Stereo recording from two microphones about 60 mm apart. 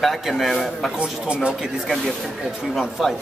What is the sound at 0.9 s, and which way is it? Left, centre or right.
Speech, centre.